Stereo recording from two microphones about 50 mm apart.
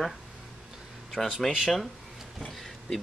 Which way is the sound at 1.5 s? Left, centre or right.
Centre.